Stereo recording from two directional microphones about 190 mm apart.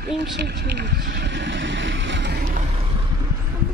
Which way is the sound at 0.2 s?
60° right (ahead or behind).